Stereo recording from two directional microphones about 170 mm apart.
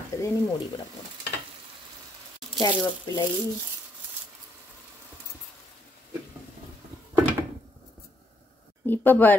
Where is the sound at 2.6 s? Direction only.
25° left (ahead or behind).